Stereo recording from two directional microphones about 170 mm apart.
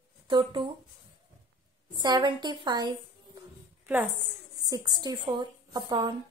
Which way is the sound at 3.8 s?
10° right (ahead or behind).